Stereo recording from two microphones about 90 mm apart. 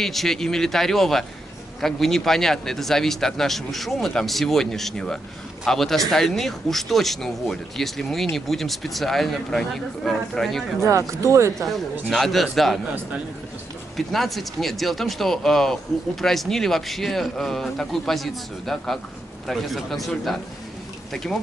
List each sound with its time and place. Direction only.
0.0 s speech: 5° left (ahead or behind)
10.8 s speech: 35° right (ahead or behind)
11.6 s speech: centre (ahead or behind)
13.9 s speech: centre (ahead or behind)